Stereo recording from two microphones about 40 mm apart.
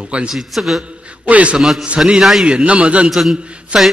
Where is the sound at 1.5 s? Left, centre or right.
Centre.